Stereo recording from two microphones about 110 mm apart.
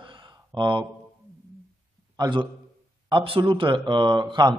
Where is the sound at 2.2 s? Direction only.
45° right (ahead or behind).